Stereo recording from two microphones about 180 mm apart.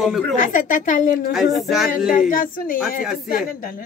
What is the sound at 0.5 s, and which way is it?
Speech, 45° left (ahead or behind).